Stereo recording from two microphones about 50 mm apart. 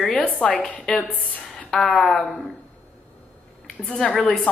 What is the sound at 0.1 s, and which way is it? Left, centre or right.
Speech, left.